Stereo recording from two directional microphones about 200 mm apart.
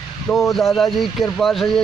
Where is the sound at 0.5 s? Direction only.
Centre (ahead or behind).